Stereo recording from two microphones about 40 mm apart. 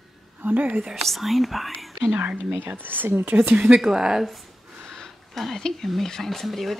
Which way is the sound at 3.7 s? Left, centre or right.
Centre.